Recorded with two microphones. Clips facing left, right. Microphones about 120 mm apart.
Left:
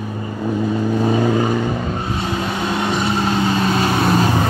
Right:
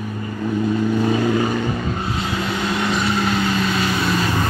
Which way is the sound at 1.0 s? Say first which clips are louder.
Left 2 dB; 30° left (ahead or behind).